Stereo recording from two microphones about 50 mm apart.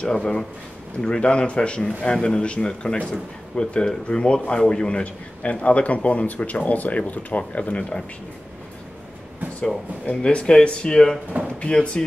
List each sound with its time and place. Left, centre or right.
0.0 s a man's voice: centre
10.2 s a man's voice: centre